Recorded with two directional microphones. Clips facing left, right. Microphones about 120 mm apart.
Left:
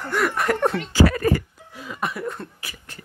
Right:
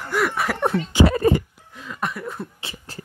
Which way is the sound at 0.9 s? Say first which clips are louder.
Right 3 dB; 25° right (ahead or behind).